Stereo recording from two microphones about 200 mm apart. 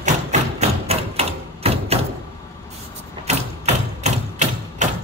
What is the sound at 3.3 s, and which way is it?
Mechanisms, 35° right (ahead or behind).